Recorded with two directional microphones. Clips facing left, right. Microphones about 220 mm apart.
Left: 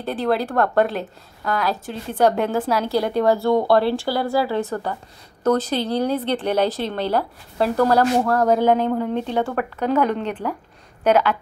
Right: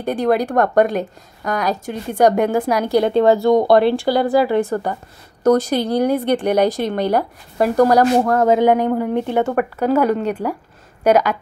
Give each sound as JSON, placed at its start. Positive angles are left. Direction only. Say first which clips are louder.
{"t": 0.0, "sound": "speech", "louder": "right 4 dB", "side_deg": -15}
{"t": 3.1, "sound": "speech", "louder": "right 5 dB", "side_deg": -25}